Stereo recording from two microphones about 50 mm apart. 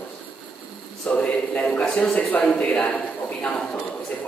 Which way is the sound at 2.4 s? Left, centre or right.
Centre.